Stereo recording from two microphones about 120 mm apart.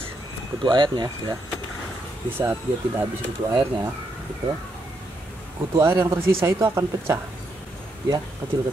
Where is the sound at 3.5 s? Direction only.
45° right (ahead or behind).